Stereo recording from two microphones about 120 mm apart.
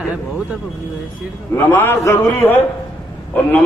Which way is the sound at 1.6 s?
20° left (ahead or behind).